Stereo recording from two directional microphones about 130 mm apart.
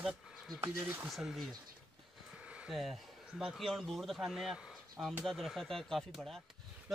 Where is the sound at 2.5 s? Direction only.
5° right (ahead or behind).